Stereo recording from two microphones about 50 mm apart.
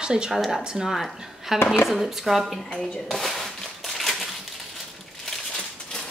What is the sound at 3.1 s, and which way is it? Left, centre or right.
Crushing, centre.